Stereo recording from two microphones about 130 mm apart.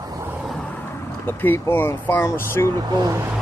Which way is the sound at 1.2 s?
15° left (ahead or behind).